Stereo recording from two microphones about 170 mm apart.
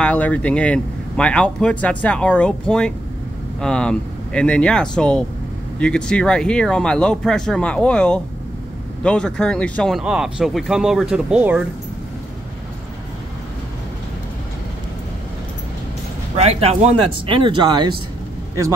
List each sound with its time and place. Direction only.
0.0 s speech: 10° left (ahead or behind)
16.3 s speech: 40° right (ahead or behind)